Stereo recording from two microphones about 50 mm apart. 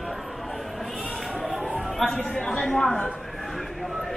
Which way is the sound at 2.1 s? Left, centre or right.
Centre.